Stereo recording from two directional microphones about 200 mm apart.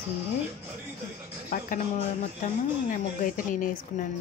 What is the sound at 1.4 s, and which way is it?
Speech, 45° left (ahead or behind).